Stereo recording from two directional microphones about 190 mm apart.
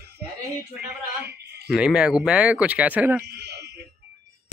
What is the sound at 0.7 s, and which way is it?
Speech, 60° right (ahead or behind).